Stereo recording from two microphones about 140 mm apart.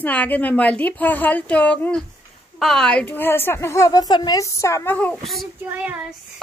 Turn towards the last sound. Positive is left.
turn(degrees=-10)  # may be behind; listen again after turning